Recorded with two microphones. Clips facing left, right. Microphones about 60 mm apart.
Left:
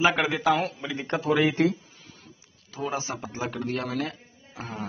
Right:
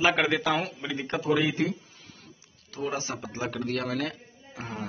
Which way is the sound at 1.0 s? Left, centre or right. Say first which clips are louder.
Left 3 dB; left.